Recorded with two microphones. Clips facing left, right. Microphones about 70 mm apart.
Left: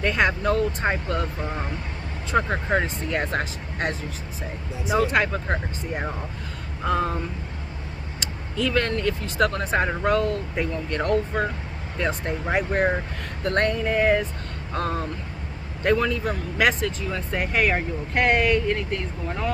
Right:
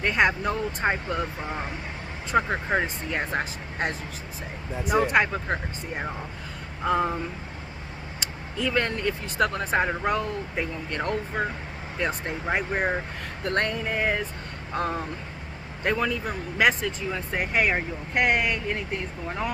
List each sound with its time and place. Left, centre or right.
0.0 s speech: centre
4.9 s speech: centre
8.5 s speech: centre
9.7 s speech: centre